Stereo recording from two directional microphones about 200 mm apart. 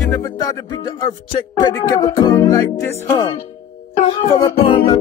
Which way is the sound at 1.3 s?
25° left (ahead or behind).